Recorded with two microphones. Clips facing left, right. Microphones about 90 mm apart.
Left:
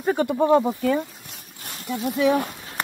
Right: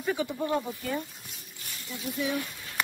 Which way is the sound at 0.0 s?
50° left (ahead or behind).